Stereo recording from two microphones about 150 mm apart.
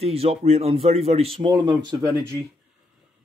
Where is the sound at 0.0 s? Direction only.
45° right (ahead or behind).